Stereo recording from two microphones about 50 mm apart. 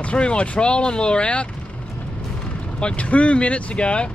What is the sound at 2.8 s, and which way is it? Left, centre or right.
Speech, left.